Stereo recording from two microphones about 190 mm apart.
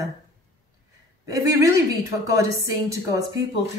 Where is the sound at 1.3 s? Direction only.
20° right (ahead or behind).